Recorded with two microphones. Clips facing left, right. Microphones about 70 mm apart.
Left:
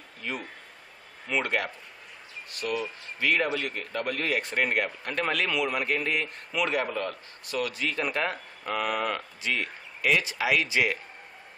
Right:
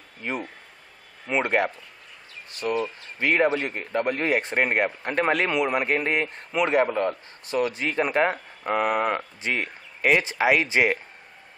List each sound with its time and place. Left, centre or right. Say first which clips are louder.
0.2 s a man's voice: right 4 dB; right